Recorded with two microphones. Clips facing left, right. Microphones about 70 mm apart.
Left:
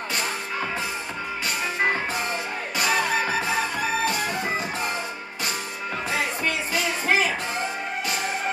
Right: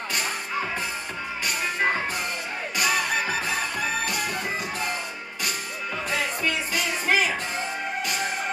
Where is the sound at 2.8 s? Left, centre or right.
Left.